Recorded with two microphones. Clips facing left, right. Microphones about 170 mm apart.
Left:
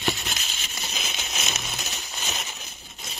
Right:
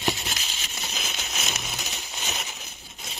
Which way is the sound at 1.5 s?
10° right (ahead or behind).